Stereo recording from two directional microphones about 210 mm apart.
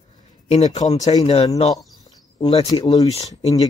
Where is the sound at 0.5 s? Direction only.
35° left (ahead or behind).